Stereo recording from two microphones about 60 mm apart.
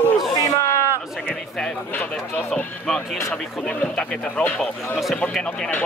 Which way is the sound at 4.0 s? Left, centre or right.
Centre.